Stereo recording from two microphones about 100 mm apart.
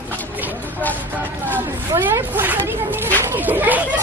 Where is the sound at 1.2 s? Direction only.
20° right (ahead or behind).